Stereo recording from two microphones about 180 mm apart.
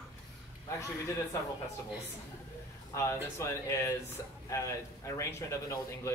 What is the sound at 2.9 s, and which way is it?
Speech, 15° left (ahead or behind).